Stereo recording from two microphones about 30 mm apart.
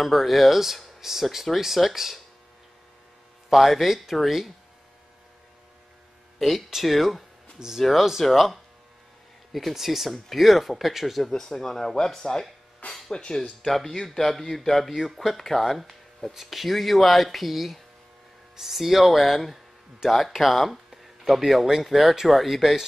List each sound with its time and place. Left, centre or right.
0.0 s speech: centre
3.4 s speech: centre
6.7 s speech: centre
7.6 s speech: right
8.2 s speech: centre
11.1 s speech: centre
13.1 s speech: left
13.7 s speech: centre